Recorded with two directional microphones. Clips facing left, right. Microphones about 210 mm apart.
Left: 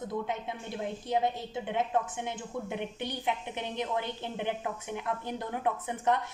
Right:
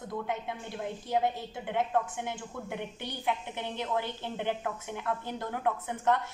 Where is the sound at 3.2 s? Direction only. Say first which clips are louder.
Right 3 dB; 15° left (ahead or behind).